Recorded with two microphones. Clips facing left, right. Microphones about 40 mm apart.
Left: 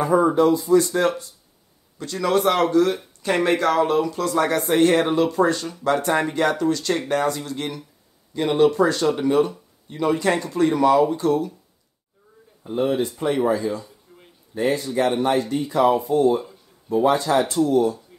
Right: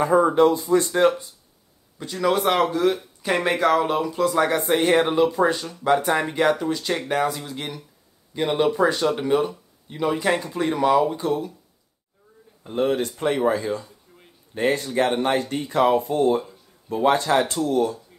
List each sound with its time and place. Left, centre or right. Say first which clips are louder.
0.0 s speech: even; right
0.3 s speech: even; right
0.7 s speech: even; right
2.0 s speech: left 1 dB; centre
12.7 s speech: left 1 dB; right
13.5 s speech: left 1 dB; right
14.1 s a sound: left 3 dB; centre
14.5 s speech: even; right